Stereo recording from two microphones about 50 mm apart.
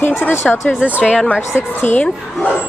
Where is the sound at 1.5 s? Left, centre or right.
Left.